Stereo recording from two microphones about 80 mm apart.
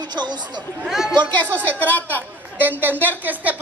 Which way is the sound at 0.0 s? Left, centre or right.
Right.